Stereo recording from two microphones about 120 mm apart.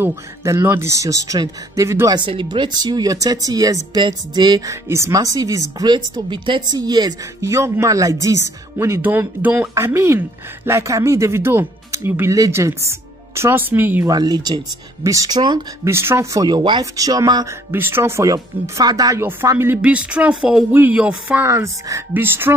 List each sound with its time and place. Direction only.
0.0 s a woman's voice: 25° right (ahead or behind)
2.1 s a woman's voice: 45° right (ahead or behind); by 14.0 s 15° right (ahead or behind)
14.0 s speech: 35° right (ahead or behind)
15.8 s a woman's voice: 20° right (ahead or behind)
16.4 s a woman's voice: 40° right (ahead or behind)
17.6 s a woman's voice: 20° right (ahead or behind)
19.7 s speech: 10° right (ahead or behind)
21.5 s a woman's voice: 25° right (ahead or behind)